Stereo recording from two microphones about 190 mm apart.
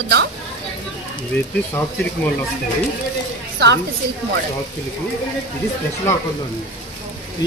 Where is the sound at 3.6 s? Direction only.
60° right (ahead or behind).